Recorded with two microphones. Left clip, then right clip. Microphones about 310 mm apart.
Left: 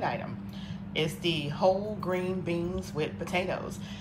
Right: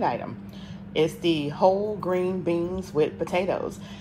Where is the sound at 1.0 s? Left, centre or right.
Centre.